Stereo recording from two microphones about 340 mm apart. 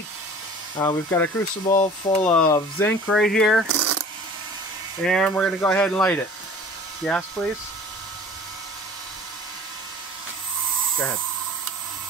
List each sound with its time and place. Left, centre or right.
0.7 s speech: centre
3.6 s coin: right
5.0 s speech: centre